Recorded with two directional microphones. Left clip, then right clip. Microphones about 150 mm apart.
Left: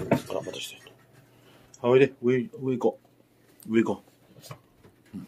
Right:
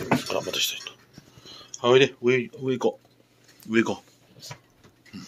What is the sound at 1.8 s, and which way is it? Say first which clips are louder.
Speech: right 2 dB; 5° left (ahead or behind).